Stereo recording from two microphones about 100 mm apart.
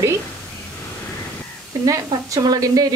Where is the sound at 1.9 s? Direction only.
35° right (ahead or behind).